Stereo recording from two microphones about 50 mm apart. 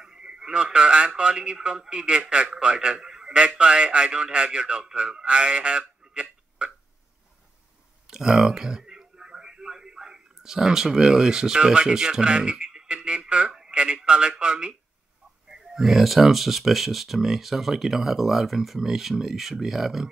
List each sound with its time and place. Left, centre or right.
0.0 s a man's voice: centre
8.1 s speech: centre
15.4 s speech: centre